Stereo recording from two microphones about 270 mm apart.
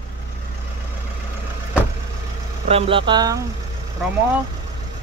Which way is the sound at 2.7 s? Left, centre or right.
Centre.